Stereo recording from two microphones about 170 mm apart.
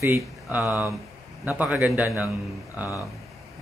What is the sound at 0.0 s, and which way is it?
A man's voice, 15° right (ahead or behind).